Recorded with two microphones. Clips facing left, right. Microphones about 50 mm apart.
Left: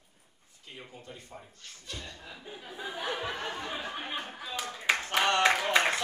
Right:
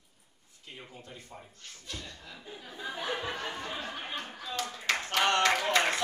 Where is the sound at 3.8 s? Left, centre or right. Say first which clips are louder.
Left 1 dB; centre.